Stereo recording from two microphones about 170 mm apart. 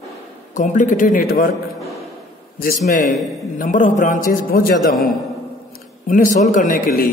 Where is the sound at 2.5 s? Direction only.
60° left (ahead or behind).